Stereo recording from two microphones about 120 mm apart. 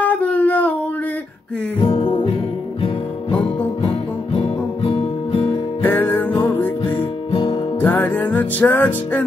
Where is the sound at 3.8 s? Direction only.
50° left (ahead or behind).